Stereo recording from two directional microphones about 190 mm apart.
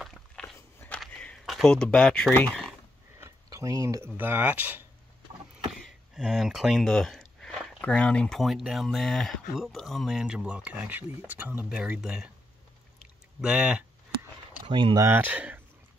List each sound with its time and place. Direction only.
0.0 s dog: centre (ahead or behind)
0.6 s a sound: 10° left (ahead or behind)
3.2 s speech: 15° right (ahead or behind)
13.4 s speech: 5° right (ahead or behind)
14.7 s speech: 25° right (ahead or behind)
15.0 s speech: 10° right (ahead or behind)